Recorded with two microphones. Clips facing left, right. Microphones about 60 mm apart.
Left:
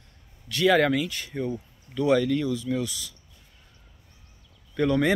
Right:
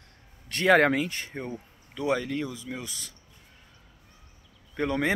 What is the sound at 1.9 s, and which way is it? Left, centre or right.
A man's voice, right.